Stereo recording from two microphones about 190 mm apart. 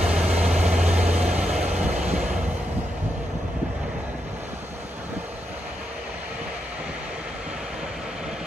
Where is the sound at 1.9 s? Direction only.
35° right (ahead or behind).